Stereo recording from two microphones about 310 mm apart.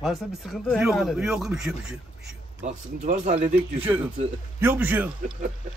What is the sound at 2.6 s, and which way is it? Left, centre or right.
Speech, right.